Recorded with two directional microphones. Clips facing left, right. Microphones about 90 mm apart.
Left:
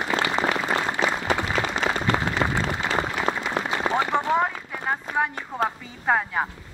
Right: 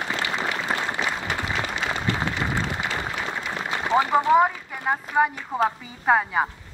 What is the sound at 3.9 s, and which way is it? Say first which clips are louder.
A man's voice: right 6 dB; 5° right (ahead or behind).